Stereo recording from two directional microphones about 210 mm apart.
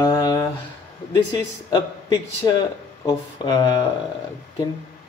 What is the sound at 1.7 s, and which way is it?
Speech, 20° left (ahead or behind).